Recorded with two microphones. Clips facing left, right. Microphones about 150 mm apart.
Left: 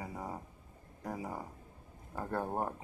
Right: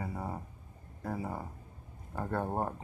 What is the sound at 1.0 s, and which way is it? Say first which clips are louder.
Speech: right 3 dB; 15° left (ahead or behind).